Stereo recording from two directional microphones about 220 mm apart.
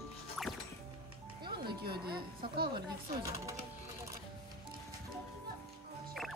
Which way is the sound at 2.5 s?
50° right (ahead or behind).